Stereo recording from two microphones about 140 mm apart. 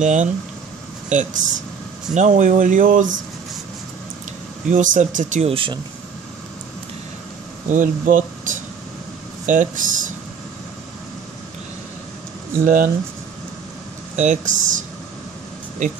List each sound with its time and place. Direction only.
0.0 s speech: 60° right (ahead or behind)
4.6 s speech: 65° right (ahead or behind)
5.5 s speech: 40° right (ahead or behind)
7.6 s speech: 65° right (ahead or behind)
9.5 s speech: 70° right (ahead or behind)
12.6 s speech: 80° right
14.1 s speech: 60° right (ahead or behind)